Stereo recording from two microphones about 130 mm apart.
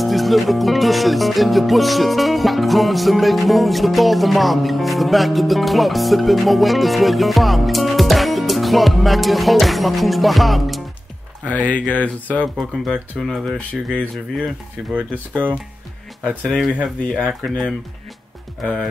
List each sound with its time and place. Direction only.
0.0 s speech: centre (ahead or behind)
12.5 s speech: centre (ahead or behind)
15.0 s speech: 10° right (ahead or behind)
16.4 s speech: 5° left (ahead or behind)